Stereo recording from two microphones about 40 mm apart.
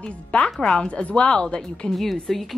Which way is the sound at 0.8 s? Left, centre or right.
Left.